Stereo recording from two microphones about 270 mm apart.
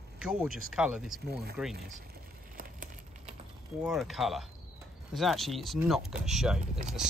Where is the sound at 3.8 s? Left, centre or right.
Centre.